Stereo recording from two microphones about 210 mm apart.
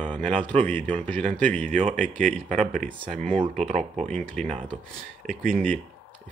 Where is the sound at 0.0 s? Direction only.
5° left (ahead or behind).